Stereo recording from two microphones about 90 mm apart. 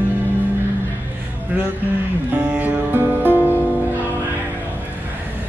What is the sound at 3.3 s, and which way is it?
Music, 25° left (ahead or behind).